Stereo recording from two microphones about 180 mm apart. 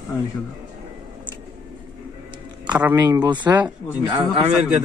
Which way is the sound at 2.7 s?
10° right (ahead or behind).